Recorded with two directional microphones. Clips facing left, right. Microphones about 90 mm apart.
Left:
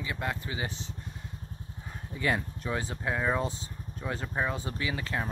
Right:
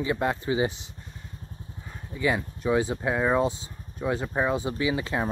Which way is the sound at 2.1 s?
5° right (ahead or behind).